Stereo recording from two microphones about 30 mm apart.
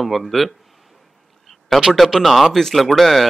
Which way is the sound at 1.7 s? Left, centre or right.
Centre.